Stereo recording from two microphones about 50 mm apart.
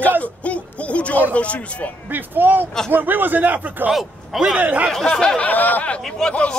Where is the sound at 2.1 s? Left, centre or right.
Right.